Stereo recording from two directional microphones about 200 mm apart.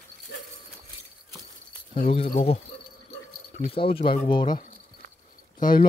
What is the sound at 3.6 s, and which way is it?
Speech, 25° left (ahead or behind).